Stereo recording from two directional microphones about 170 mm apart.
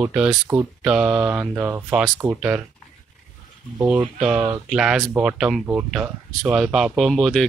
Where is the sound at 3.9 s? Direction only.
5° right (ahead or behind).